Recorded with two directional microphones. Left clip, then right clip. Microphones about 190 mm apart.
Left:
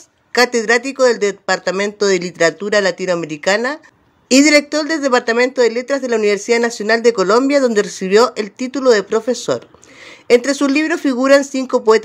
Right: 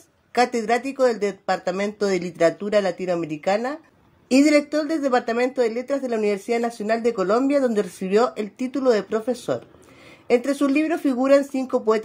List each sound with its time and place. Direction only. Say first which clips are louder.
0.3 s speech: left 7 dB; 15° left (ahead or behind)